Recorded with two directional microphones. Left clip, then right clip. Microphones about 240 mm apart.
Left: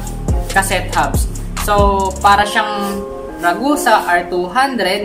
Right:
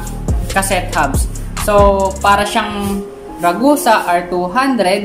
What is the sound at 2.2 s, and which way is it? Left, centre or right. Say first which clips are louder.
Speech: left 1 dB; centre.